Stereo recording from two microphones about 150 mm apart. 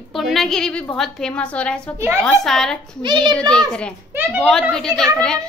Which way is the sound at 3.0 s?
30° right (ahead or behind).